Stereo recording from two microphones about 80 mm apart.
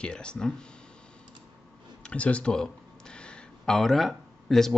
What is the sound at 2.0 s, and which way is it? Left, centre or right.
A man's voice, centre.